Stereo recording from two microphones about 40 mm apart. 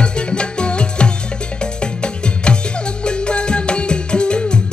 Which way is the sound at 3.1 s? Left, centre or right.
Left.